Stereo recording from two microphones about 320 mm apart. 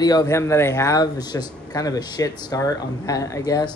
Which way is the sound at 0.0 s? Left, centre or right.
Centre.